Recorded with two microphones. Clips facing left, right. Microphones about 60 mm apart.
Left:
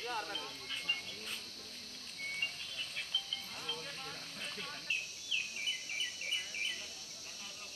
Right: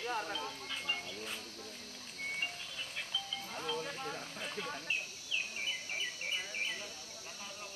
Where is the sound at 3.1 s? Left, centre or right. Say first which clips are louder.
Right 1 dB; centre.